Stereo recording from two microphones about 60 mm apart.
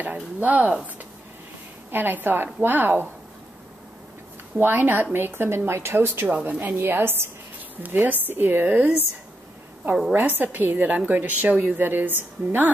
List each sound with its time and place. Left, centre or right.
0.0 s speech: right
1.9 s a woman's voice: right
4.6 s a woman's voice: right
10.1 s a woman's voice: right